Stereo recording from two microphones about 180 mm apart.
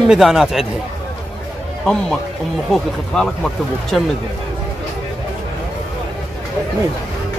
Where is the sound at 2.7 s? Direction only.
5° left (ahead or behind).